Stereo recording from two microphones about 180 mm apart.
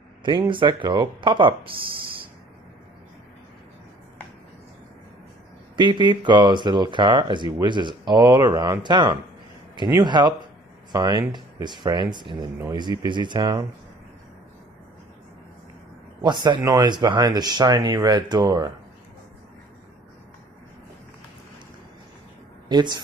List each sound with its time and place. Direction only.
0.2 s speech: 25° right (ahead or behind)
5.8 s speech: 25° right (ahead or behind)
16.2 s speech: 25° right (ahead or behind)
22.7 s speech: 25° right (ahead or behind)